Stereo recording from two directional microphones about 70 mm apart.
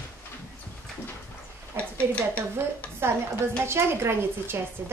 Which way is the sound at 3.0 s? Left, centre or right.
Right.